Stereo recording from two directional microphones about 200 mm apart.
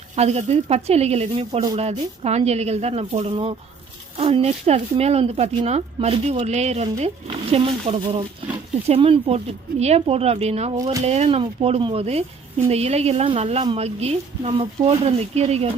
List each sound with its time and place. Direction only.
0.1 s speech: 35° right (ahead or behind)